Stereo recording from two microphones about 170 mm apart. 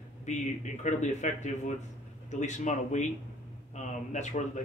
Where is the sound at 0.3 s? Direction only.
45° left (ahead or behind).